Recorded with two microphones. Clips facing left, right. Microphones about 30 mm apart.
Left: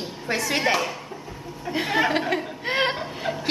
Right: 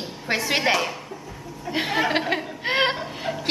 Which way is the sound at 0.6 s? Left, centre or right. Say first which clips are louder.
Even; centre.